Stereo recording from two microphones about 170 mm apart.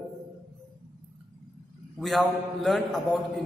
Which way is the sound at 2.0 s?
Centre (ahead or behind).